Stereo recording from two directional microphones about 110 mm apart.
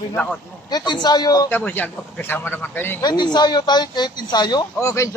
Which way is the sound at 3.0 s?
40° left (ahead or behind).